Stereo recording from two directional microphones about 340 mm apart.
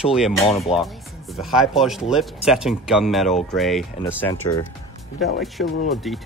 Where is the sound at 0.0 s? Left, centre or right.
Centre.